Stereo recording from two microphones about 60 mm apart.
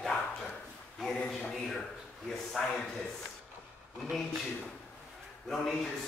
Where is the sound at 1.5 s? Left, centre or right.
Centre.